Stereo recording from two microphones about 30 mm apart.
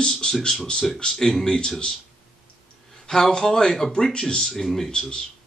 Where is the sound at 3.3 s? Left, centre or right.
Left.